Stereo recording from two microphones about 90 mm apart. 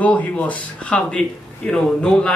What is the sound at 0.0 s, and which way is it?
Speech, 15° left (ahead or behind).